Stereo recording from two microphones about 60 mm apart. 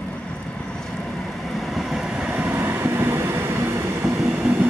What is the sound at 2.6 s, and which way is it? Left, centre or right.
Train, right.